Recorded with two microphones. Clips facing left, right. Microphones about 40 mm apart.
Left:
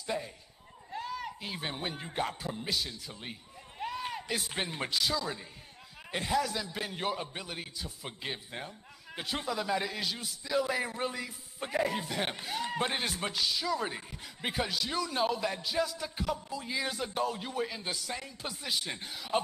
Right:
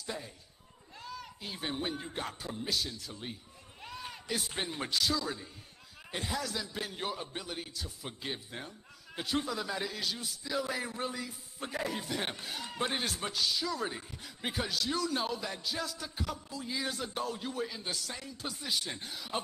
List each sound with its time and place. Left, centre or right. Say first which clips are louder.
1.1 s speech: left 5 dB; centre
3.8 s a sound: left 8 dB; left
4.6 s speech: left 2 dB; centre
4.9 s a man's voice: even; centre
10.8 s speech: left 3 dB; centre